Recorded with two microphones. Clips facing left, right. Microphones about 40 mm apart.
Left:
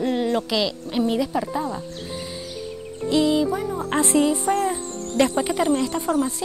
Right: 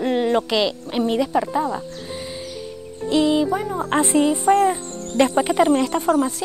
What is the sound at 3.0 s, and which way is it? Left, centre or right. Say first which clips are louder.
Insect: right 1 dB; centre.